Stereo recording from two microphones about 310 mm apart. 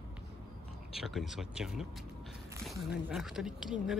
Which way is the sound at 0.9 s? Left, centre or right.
Centre.